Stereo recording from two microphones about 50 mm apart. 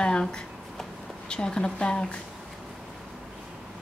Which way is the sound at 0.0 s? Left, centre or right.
Centre.